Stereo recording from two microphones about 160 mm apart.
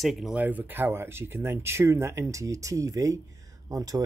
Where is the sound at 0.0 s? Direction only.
Centre (ahead or behind).